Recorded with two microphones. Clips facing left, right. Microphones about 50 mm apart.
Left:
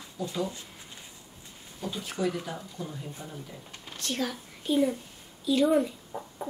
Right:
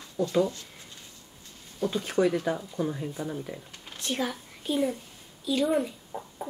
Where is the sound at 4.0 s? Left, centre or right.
Centre.